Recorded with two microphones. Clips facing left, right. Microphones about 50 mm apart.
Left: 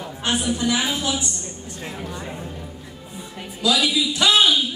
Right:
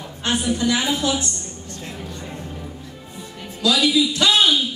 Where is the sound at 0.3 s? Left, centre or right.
Centre.